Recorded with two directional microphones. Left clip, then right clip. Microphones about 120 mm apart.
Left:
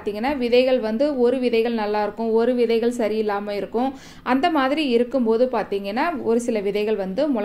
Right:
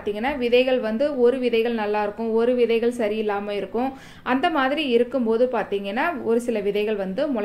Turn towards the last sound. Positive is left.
turn(degrees=30)  # may be behind; listen again after turning